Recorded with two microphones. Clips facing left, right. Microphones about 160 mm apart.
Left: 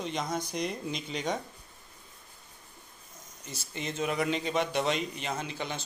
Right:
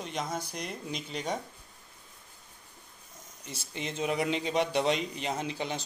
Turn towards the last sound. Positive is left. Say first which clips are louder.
# right 2 dB
turn(degrees=-30)  # may be behind; listen again after turning